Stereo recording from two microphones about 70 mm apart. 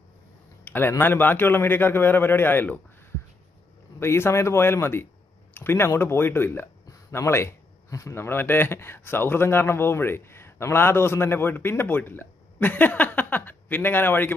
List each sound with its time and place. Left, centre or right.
0.7 s a man's voice: left
4.0 s a man's voice: left